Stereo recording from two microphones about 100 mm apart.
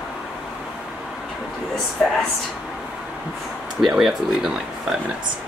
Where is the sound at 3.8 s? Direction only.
Centre (ahead or behind).